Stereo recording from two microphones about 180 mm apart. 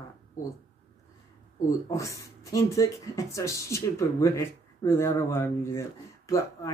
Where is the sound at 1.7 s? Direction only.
15° left (ahead or behind).